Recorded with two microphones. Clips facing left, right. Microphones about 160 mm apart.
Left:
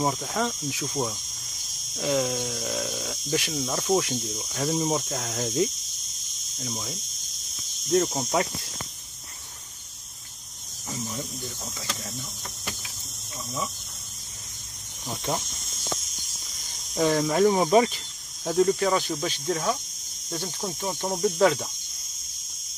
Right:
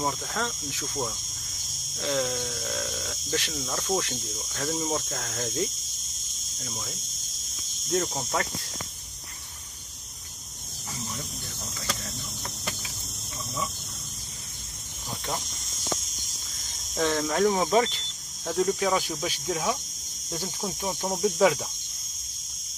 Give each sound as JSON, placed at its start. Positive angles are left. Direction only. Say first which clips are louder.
{"t": 0.1, "sound": "cricket", "louder": "left 4 dB", "side_deg": 10}
{"t": 7.9, "sound": "speech", "louder": "left 5 dB", "side_deg": 0}
{"t": 16.9, "sound": "speech", "louder": "left 3 dB", "side_deg": 5}